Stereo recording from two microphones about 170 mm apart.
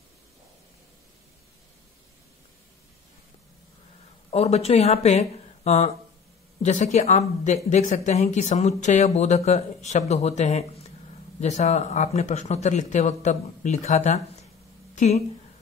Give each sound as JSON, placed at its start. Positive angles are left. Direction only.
{"t": 4.3, "sound": "a woman's voice", "side_deg": 40}